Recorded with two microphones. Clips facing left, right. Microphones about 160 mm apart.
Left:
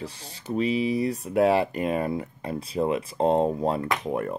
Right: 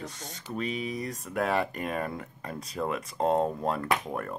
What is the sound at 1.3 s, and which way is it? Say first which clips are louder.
Speech: left 7 dB; 30° left (ahead or behind).